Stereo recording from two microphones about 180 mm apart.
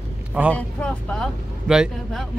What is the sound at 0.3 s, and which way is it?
Speech, 10° right (ahead or behind).